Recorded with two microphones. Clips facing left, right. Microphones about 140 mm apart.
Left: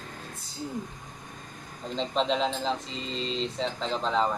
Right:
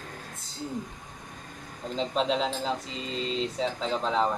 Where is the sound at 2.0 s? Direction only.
5° right (ahead or behind).